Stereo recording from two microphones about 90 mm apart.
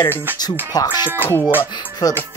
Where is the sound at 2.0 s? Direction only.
45° left (ahead or behind).